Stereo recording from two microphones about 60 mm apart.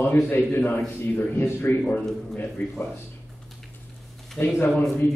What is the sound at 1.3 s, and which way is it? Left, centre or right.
A man's voice, left.